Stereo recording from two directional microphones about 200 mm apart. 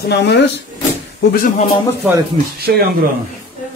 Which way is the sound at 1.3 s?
45° left (ahead or behind).